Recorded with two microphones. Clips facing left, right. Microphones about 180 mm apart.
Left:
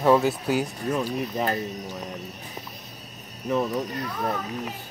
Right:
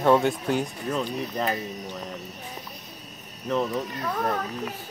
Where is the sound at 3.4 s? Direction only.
15° left (ahead or behind).